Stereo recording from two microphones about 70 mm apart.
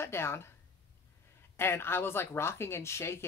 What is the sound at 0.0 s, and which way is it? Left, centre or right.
Speech, left.